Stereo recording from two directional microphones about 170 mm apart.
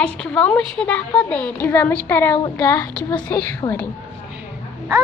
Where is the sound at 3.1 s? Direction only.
25° left (ahead or behind).